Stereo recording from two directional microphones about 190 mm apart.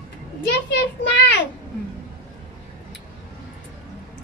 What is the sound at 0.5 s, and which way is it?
Speech, 60° left (ahead or behind).